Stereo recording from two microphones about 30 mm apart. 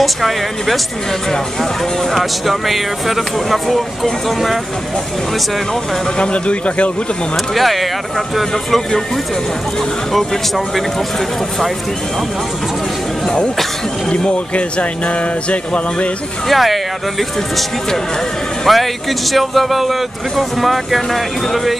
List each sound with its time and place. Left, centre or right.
0.0 s speech: centre
2.1 s speech: centre
6.1 s speech: left
7.5 s speech: centre
14.5 s speech: left
16.4 s speech: centre
18.7 s speech: centre